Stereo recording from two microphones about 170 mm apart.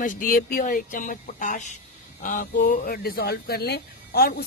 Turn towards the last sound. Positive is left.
turn(degrees=70)  # may be behind; listen again after turning